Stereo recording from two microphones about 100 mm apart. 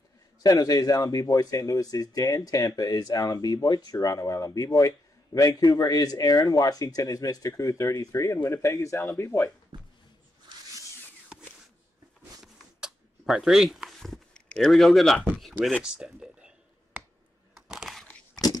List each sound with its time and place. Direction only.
0.4 s speech: 40° left (ahead or behind)
9.7 s hiccup: 50° right (ahead or behind)
12.8 s a sound: 5° right (ahead or behind)
17.6 s crushing: 5° right (ahead or behind)